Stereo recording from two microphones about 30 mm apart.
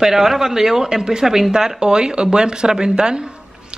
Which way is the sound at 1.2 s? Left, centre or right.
Centre.